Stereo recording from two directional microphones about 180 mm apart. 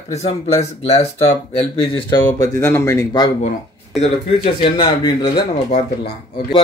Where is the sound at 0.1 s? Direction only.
35° left (ahead or behind); by 3.3 s 20° left (ahead or behind).